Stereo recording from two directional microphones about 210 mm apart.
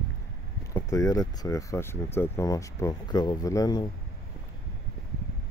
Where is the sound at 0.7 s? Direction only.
15° left (ahead or behind).